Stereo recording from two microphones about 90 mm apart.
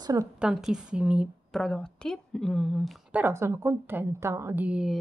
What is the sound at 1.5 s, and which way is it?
A woman's voice, 5° left (ahead or behind).